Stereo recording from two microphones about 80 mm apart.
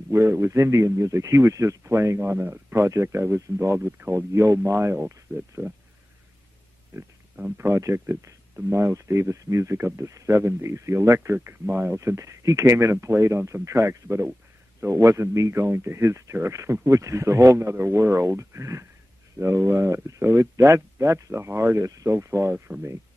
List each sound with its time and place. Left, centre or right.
0.1 s a man's voice: right
7.5 s a man's voice: right
11.1 s a man's voice: right